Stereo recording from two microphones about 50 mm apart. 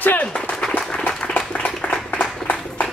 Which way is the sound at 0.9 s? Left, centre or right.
Centre.